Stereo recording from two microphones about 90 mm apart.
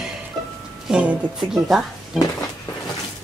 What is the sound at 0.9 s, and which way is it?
Speech, 10° right (ahead or behind).